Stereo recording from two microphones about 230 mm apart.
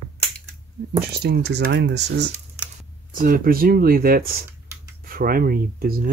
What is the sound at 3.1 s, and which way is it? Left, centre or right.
Speech, right.